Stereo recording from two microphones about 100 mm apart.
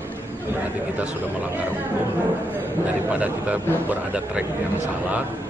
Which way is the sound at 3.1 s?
15° right (ahead or behind).